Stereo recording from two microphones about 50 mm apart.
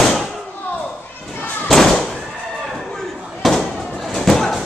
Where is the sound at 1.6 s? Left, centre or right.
Centre.